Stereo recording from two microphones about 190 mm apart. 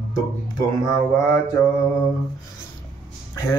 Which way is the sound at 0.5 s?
20° left (ahead or behind).